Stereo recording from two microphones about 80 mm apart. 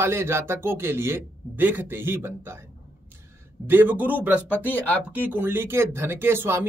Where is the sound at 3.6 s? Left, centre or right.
Right.